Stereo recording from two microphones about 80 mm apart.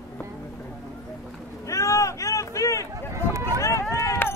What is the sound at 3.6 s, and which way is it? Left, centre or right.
Run, left.